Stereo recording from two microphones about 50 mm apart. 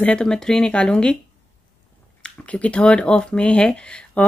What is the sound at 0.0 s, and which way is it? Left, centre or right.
Speech, centre.